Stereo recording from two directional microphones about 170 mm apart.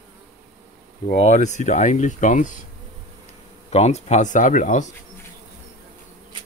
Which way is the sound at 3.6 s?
40° left (ahead or behind).